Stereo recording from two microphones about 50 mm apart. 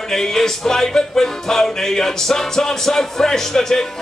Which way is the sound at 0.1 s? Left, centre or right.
Centre.